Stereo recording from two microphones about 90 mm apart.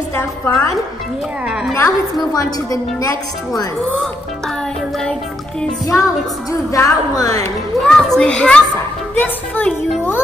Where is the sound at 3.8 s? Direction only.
5° left (ahead or behind).